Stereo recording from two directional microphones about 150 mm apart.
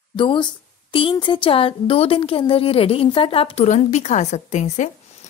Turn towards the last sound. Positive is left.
turn(degrees=50)  # may be behind; listen again after turning